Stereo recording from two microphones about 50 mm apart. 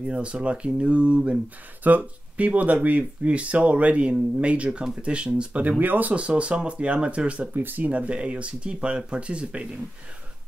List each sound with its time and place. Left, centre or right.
0.1 s speech: right
5.6 s speech: right
7.5 s speech: right